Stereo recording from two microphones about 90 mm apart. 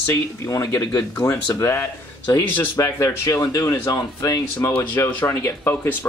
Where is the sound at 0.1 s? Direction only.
35° left (ahead or behind).